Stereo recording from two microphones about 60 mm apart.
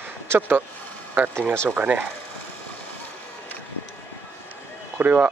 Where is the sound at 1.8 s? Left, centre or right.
Right.